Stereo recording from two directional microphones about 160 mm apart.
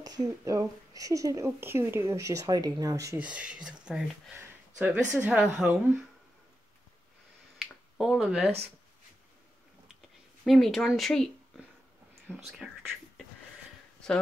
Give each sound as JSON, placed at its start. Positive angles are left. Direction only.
{"t": 0.0, "sound": "speech", "side_deg": -25}
{"t": 3.2, "sound": "speech", "side_deg": -5}
{"t": 4.4, "sound": "a sound", "side_deg": -10}
{"t": 5.2, "sound": "speech", "side_deg": -5}
{"t": 7.6, "sound": "finger snapping", "side_deg": 0}
{"t": 10.4, "sound": "speech", "side_deg": 0}